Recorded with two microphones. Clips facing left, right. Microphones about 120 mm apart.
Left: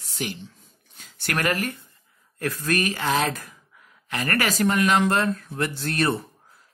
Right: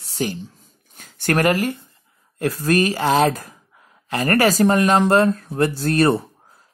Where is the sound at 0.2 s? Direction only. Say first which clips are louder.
Right 7 dB; 40° right (ahead or behind).